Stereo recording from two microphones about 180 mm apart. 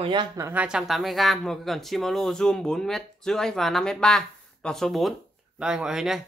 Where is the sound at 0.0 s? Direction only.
25° right (ahead or behind).